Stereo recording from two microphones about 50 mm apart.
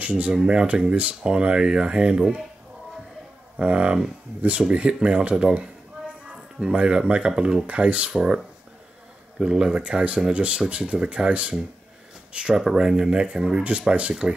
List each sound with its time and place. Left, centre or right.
0.0 s speech: right
3.5 s speech: right
8.1 s speech: centre
9.4 s speech: centre
12.5 s speech: centre